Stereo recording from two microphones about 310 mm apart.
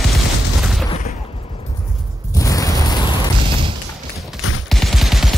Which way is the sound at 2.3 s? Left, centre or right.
Centre.